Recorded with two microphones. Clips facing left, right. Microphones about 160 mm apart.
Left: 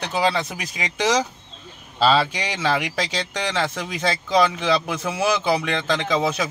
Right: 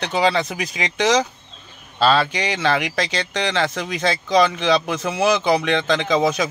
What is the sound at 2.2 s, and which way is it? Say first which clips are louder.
Speech: right 4 dB; 65° right (ahead or behind).